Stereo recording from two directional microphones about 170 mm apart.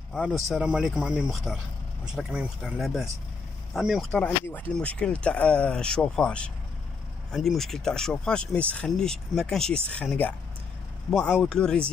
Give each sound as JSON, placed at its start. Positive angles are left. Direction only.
{"t": 0.1, "sound": "speech", "side_deg": 0}